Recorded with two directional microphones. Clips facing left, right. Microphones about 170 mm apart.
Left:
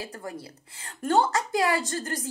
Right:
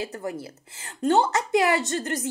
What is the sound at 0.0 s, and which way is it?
A woman's voice, 25° right (ahead or behind).